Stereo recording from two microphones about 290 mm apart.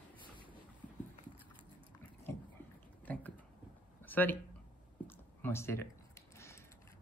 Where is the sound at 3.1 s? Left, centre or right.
Centre.